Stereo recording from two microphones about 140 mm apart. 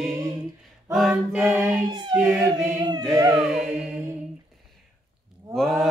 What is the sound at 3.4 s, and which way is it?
Music, 5° right (ahead or behind).